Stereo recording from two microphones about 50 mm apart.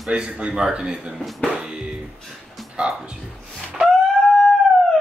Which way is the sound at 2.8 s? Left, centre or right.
Right.